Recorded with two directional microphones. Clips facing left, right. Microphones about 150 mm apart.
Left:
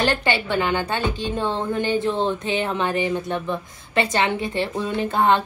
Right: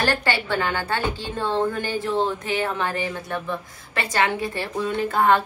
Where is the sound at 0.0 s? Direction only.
20° left (ahead or behind).